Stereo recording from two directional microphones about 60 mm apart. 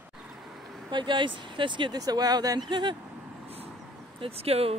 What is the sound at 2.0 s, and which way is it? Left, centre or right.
Speech, right.